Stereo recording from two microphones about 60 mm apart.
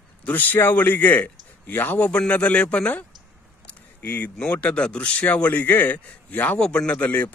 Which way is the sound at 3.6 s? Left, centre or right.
Left.